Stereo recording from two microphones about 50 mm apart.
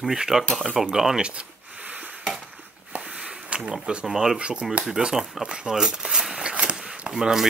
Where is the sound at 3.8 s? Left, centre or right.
Centre.